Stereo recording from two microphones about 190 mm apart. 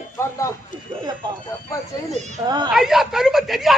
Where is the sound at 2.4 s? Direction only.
25° right (ahead or behind).